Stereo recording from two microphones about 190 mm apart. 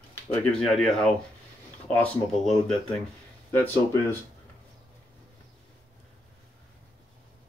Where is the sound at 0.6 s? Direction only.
Centre (ahead or behind).